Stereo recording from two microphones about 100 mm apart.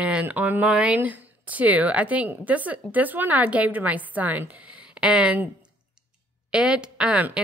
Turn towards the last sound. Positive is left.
turn(degrees=-10)  # may be behind; listen again after turning